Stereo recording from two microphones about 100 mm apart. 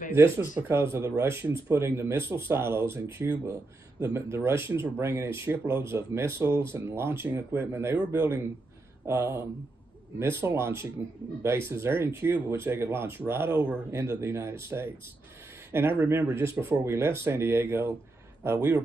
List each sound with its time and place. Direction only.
0.1 s speech: 20° right (ahead or behind)